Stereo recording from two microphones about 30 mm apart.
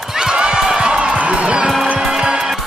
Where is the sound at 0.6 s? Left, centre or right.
Right.